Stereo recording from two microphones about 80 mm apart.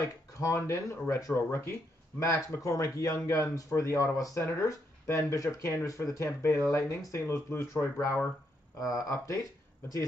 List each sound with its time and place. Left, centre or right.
0.0 s speech: left
9.1 s speech: left